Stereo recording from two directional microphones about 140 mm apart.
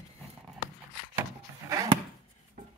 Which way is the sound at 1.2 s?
25° right (ahead or behind).